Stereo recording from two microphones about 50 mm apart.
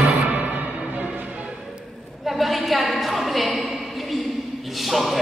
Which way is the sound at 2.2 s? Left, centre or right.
Centre.